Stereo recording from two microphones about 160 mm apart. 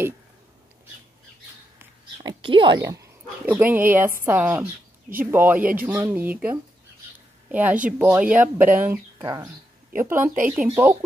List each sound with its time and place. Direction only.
2.1 s a sound: 30° right (ahead or behind)
2.8 s speech: 20° right (ahead or behind)
7.5 s speech: 10° right (ahead or behind)